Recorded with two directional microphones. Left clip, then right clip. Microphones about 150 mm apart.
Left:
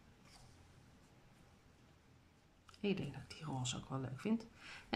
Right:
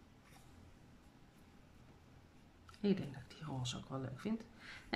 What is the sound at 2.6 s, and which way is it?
Speech, 5° left (ahead or behind).